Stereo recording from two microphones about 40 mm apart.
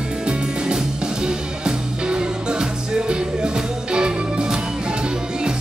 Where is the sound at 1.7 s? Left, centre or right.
Centre.